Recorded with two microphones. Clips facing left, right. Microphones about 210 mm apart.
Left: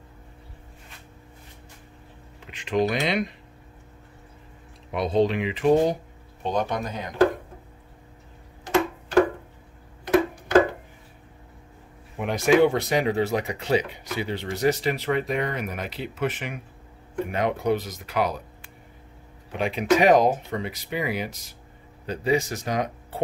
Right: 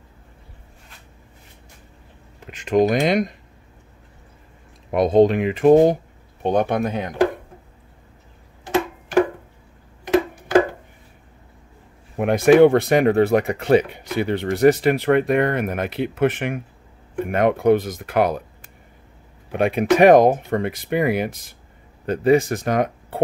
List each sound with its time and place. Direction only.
2.4 s speech: 45° right (ahead or behind)
4.9 s speech: 50° right (ahead or behind)
12.2 s speech: 55° right (ahead or behind)